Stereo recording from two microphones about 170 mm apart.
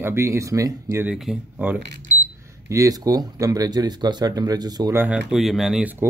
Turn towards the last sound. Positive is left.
turn(degrees=-10)  # may be behind; listen again after turning